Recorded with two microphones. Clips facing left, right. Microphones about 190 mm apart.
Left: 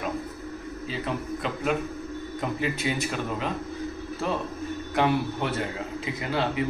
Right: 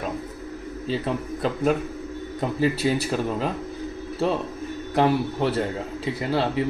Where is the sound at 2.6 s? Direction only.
35° right (ahead or behind).